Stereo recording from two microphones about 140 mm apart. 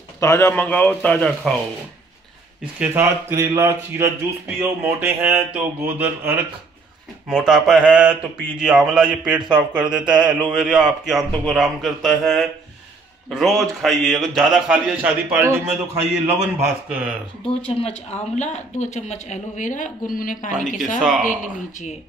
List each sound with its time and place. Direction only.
0.2 s a man's voice: 20° left (ahead or behind)
2.8 s speech: 15° right (ahead or behind)
5.2 s speech: 15° right (ahead or behind)
17.6 s a woman's voice: 45° left (ahead or behind); by 21.9 s 65° left (ahead or behind)